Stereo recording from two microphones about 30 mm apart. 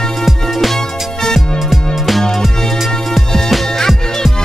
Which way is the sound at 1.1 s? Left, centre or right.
Centre.